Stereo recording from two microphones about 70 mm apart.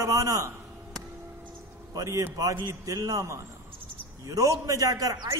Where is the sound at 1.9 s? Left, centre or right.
Right.